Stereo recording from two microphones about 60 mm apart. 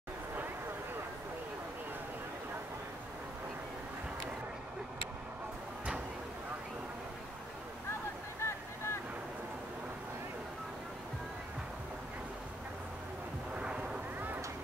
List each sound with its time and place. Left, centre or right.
8.4 s boat: left
13.6 s artillery fire: centre